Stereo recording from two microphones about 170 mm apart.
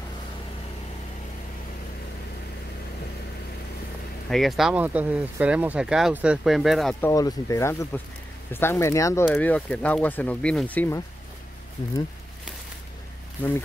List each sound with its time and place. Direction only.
4.3 s speech: centre (ahead or behind)
7.0 s speech: 20° left (ahead or behind)